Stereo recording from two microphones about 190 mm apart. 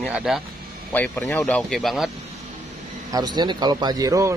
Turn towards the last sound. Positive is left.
turn(degrees=-15)  # may be behind; listen again after turning